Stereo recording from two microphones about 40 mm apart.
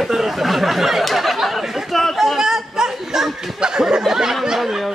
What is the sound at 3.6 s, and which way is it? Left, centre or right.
Snicker, centre.